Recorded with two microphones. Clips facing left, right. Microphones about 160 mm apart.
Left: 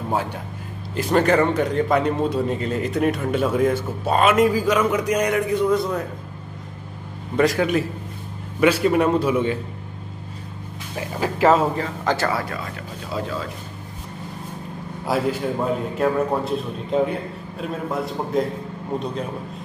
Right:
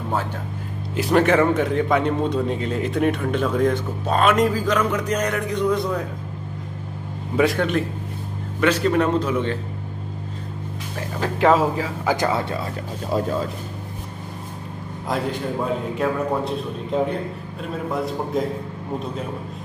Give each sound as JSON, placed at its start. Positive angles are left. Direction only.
{"t": 0.9, "sound": "a man's voice", "side_deg": 0}
{"t": 7.3, "sound": "a man's voice", "side_deg": 0}
{"t": 11.0, "sound": "a man's voice", "side_deg": 5}
{"t": 12.2, "sound": "speech", "side_deg": -25}
{"t": 13.1, "sound": "speech", "side_deg": -45}
{"t": 15.1, "sound": "a man's voice", "side_deg": 5}